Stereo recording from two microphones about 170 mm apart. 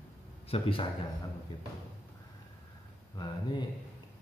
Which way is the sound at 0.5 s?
35° left (ahead or behind).